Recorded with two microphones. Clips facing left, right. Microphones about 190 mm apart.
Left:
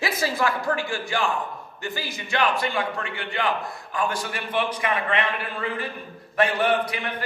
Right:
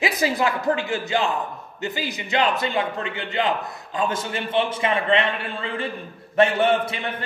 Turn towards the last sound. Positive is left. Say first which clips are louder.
# right 2 dB
turn(degrees=-25)  # may be behind; listen again after turning